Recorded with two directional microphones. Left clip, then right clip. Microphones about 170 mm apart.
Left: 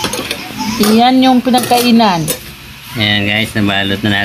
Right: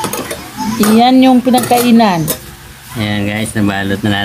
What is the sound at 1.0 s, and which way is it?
Speech, 20° right (ahead or behind).